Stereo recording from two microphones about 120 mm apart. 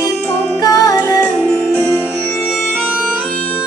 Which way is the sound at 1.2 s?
10° left (ahead or behind).